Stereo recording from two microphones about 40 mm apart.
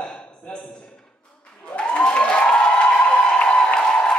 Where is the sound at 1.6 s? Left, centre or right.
Left.